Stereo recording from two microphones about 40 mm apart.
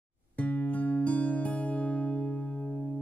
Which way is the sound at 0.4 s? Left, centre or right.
Left.